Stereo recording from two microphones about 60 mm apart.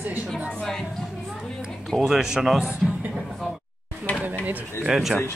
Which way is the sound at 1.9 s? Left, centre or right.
Centre.